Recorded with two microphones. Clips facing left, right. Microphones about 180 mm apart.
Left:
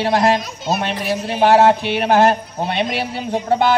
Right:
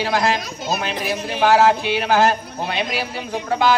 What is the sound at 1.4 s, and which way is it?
Speech, 30° left (ahead or behind).